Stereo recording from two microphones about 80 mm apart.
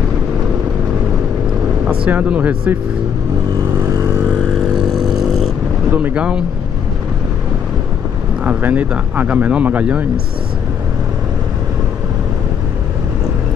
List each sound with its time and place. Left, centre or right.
2.0 s speech: centre
3.8 s vehicle: right
5.1 s a sound: centre
5.9 s boat: right
8.5 s speech: right